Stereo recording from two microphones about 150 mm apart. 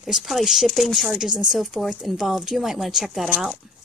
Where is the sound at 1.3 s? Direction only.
30° right (ahead or behind).